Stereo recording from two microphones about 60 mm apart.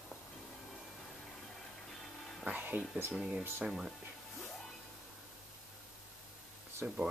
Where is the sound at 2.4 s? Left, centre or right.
Right.